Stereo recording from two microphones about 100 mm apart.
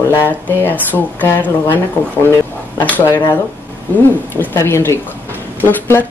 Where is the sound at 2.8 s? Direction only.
20° left (ahead or behind).